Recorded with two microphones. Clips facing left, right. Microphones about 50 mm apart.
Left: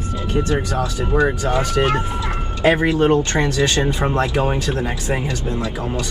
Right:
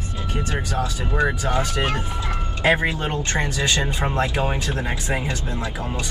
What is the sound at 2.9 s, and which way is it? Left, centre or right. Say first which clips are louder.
Speech: left 9 dB; left.